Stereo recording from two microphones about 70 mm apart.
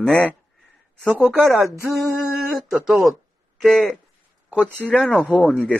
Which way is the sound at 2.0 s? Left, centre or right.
Centre.